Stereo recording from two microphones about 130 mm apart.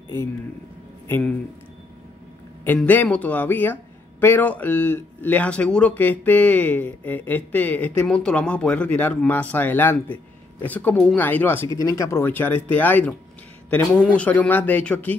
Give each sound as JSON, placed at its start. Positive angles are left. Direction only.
{"t": 1.0, "sound": "speech", "side_deg": 15}
{"t": 2.6, "sound": "speech", "side_deg": 15}